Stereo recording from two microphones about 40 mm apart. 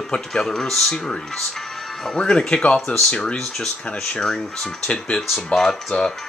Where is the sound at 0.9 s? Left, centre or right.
Left.